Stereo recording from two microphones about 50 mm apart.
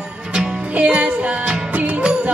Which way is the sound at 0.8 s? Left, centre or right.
Right.